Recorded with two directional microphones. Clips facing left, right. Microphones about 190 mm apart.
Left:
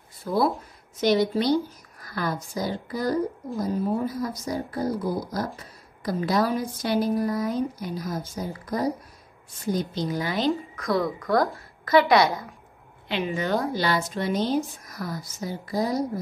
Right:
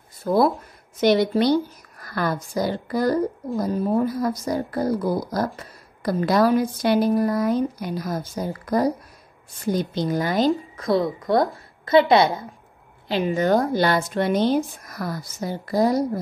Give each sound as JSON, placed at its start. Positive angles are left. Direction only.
{"t": 0.2, "sound": "speech", "side_deg": -50}
{"t": 1.0, "sound": "a woman's voice", "side_deg": -65}
{"t": 10.8, "sound": "a woman's voice", "side_deg": -30}
{"t": 13.1, "sound": "a woman's voice", "side_deg": -40}